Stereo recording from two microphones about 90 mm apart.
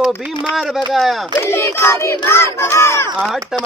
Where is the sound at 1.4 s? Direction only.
30° left (ahead or behind).